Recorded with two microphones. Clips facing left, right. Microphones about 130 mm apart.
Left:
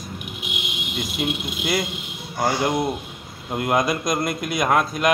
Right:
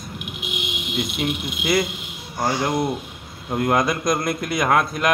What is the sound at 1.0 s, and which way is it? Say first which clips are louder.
Speech: right 1 dB; centre (ahead or behind).